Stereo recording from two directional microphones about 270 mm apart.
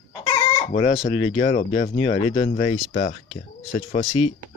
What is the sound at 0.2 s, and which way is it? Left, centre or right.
Chicken, left.